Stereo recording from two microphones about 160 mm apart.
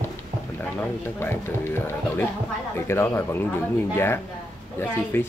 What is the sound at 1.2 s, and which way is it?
A man's voice, 15° left (ahead or behind).